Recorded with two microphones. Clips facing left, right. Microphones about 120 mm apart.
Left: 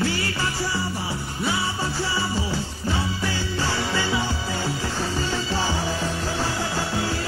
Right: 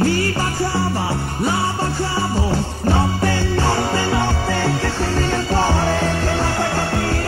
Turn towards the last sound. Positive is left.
turn(degrees=-65)  # may be behind; listen again after turning